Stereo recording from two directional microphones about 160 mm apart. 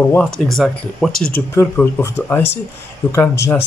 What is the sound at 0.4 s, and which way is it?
Speech, centre (ahead or behind).